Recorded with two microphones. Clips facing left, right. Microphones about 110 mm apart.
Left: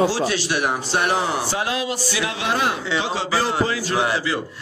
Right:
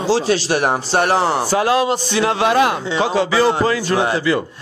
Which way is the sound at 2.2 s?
55° right (ahead or behind).